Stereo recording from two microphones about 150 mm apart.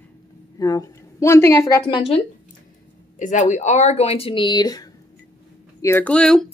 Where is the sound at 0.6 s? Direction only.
25° left (ahead or behind).